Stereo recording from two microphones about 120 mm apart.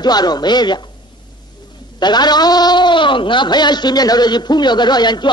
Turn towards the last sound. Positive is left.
turn(degrees=35)  # may be behind; listen again after turning